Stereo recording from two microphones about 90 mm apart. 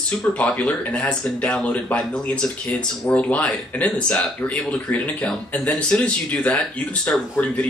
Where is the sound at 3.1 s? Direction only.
15° left (ahead or behind).